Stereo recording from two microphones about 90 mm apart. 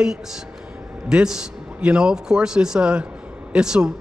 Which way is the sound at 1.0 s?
5° right (ahead or behind).